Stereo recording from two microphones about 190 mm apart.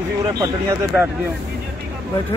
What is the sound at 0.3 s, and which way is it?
Speech, 20° right (ahead or behind).